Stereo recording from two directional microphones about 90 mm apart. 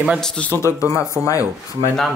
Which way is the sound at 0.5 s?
30° left (ahead or behind).